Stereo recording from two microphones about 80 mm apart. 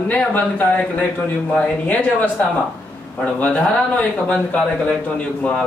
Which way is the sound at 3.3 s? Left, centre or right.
Centre.